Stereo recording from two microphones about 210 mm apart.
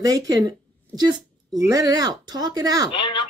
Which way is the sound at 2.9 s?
20° left (ahead or behind).